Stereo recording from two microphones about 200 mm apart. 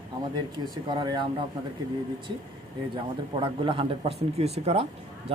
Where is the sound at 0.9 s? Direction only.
20° right (ahead or behind).